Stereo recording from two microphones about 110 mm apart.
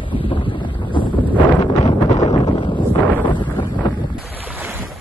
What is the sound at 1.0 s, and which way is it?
Wind noise, 50° left (ahead or behind).